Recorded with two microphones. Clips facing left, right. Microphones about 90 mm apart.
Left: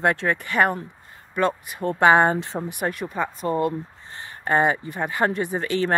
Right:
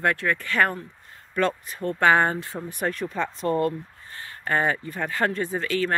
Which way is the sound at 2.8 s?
10° left (ahead or behind).